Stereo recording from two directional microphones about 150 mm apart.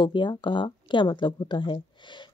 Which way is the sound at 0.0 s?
30° left (ahead or behind).